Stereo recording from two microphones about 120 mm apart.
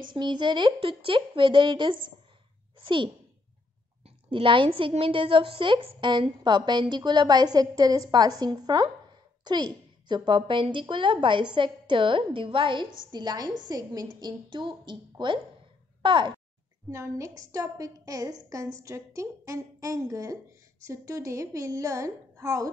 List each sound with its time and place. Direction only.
0.1 s a woman's voice: 40° right (ahead or behind)
4.3 s a woman's voice: 45° right (ahead or behind)
16.9 s a woman's voice: 25° right (ahead or behind)